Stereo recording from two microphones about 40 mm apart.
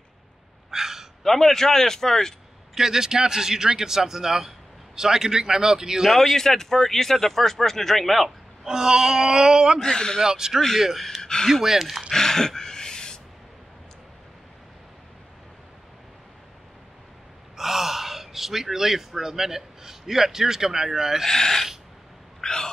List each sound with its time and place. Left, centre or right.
0.7 s gasp: centre
1.2 s a man's voice: centre
2.7 s a man's voice: centre
6.3 s a man's voice: centre
8.6 s a man's voice: centre
9.8 s speech: centre
10.2 s a man's voice: centre
10.8 s a man's voice: centre
12.1 s a sound: centre
17.6 s speech: centre
21.3 s a man's voice: centre
22.4 s a sound: centre